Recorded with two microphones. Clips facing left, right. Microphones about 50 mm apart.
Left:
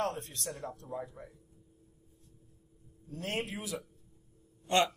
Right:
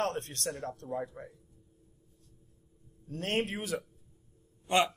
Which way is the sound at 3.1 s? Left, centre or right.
Right.